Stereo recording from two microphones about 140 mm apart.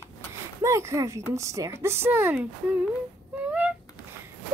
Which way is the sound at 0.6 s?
20° right (ahead or behind).